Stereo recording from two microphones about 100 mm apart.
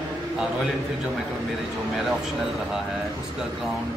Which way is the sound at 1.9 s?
Centre (ahead or behind).